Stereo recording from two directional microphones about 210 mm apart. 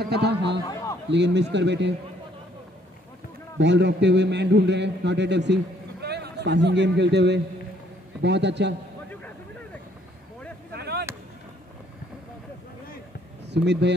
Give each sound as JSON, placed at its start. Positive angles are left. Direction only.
{"t": 0.0, "sound": "a man's voice", "side_deg": -50}
{"t": 0.7, "sound": "a sound", "side_deg": 15}
{"t": 1.1, "sound": "a man's voice", "side_deg": -55}
{"t": 3.5, "sound": "a man's voice", "side_deg": -55}
{"t": 10.7, "sound": "vehicle", "side_deg": -50}
{"t": 13.5, "sound": "speech", "side_deg": -55}